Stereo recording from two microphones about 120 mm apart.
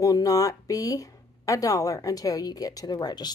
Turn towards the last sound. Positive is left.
turn(degrees=35)  # may be behind; listen again after turning